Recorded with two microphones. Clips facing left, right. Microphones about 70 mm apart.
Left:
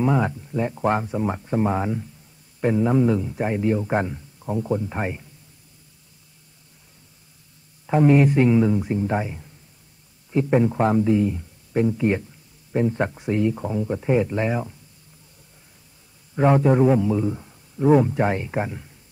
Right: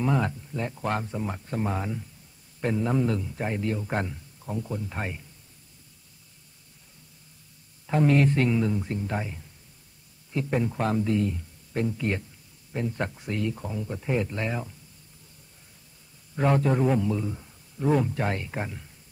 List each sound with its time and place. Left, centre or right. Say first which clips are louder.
0.0 s a man's voice: left 5 dB; centre
7.8 s a man's voice: left 5 dB; centre
16.3 s a man's voice: left 6 dB; centre